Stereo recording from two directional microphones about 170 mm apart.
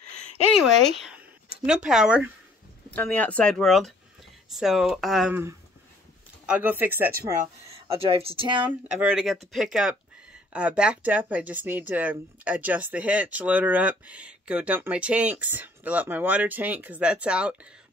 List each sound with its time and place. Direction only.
0.8 s speech: centre (ahead or behind)
2.9 s speech: 10° left (ahead or behind)
5.3 s speech: 15° right (ahead or behind)
7.1 s speech: 60° right (ahead or behind)
8.0 s speech: 35° right (ahead or behind)
8.6 s speech: 5° right (ahead or behind)